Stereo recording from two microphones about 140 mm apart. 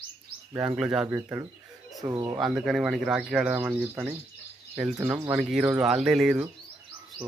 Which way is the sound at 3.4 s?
15° right (ahead or behind).